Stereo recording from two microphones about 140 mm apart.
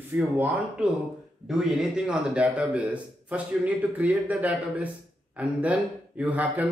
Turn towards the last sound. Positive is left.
turn(degrees=-10)  # may be behind; listen again after turning